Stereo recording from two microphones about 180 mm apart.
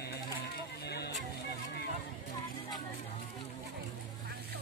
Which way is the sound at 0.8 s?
65° left (ahead or behind).